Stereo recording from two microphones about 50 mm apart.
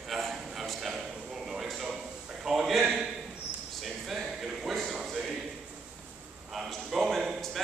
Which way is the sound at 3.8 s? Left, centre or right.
Centre.